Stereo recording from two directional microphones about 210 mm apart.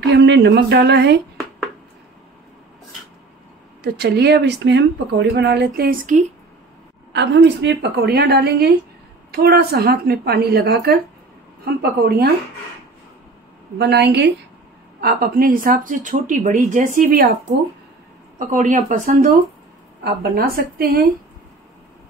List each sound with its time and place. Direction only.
0.0 s a woman's voice: 55° right (ahead or behind)
3.8 s a woman's voice: 50° right (ahead or behind)
7.1 s a woman's voice: 55° right (ahead or behind)
13.7 s a woman's voice: 50° right (ahead or behind)
18.4 s speech: 35° right (ahead or behind)
20.0 s a woman's voice: 50° right (ahead or behind)